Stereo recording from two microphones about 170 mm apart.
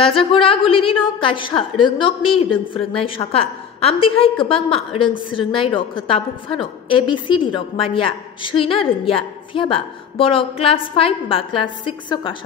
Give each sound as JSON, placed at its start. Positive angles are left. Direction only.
{"t": 0.0, "sound": "a woman's voice", "side_deg": 30}